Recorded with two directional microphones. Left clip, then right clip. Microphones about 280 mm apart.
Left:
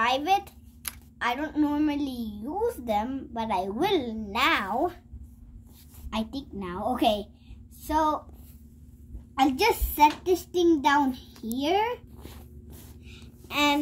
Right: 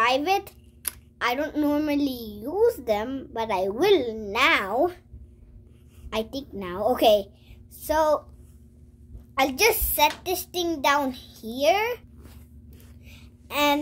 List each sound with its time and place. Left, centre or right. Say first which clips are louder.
0.0 s a child's voice: right 2 dB; right
6.0 s a child's voice: right 4 dB; right
9.3 s a child's voice: right 2 dB; right
13.0 s a sound: left 1 dB; right